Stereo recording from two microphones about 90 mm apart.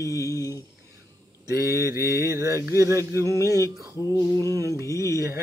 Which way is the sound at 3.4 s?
35° left (ahead or behind).